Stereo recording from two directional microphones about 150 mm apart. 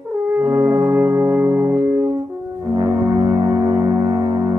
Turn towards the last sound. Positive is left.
turn(degrees=-25)  # may be behind; listen again after turning